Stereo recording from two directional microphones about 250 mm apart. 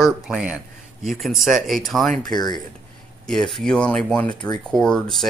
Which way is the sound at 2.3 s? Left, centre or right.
Centre.